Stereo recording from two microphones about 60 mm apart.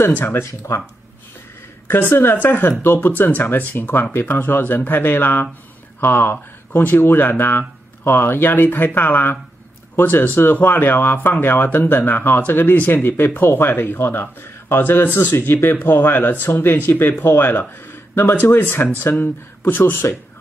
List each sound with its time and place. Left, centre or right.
0.2 s speech: left
0.5 s speech: left
1.9 s speech: left